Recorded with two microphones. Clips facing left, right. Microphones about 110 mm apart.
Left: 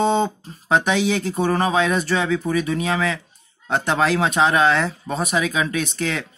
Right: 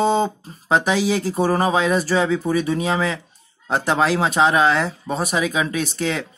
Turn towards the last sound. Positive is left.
turn(degrees=0)  # may be behind; listen again after turning